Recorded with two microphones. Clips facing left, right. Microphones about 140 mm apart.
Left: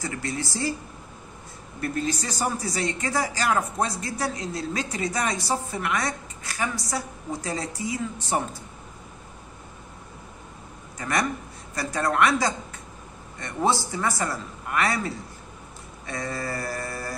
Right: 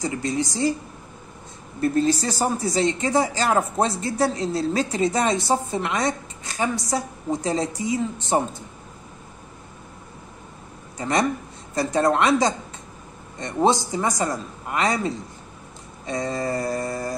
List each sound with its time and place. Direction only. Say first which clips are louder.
0.0 s speech: right 6 dB; 20° right (ahead or behind)
1.8 s speech: right 7 dB; 30° right (ahead or behind)
11.0 s speech: right 4 dB; 25° right (ahead or behind)